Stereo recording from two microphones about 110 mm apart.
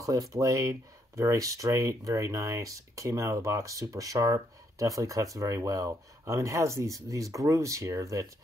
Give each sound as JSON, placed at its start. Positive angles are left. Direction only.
{"t": 0.0, "sound": "speech", "side_deg": -30}